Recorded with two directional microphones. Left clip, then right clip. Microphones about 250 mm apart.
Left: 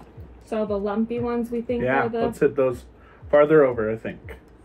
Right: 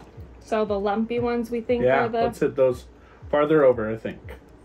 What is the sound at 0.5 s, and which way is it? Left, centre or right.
A woman's voice, centre.